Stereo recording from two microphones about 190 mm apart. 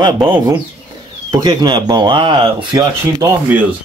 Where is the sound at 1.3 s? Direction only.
20° right (ahead or behind).